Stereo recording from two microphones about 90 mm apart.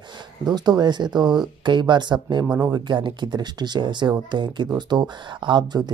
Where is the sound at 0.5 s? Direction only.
50° right (ahead or behind).